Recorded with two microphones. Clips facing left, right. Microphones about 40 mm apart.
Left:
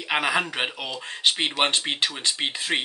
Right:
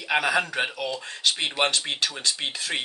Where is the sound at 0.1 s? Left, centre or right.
Left.